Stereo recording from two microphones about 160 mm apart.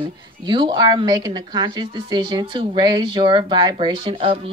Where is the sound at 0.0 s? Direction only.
30° right (ahead or behind).